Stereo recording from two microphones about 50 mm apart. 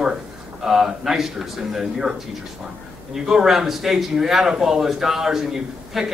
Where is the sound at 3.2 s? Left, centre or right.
Centre.